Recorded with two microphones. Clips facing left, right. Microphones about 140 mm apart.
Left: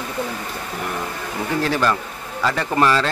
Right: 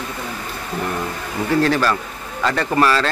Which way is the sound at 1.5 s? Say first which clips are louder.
Right 3 dB; 15° left (ahead or behind).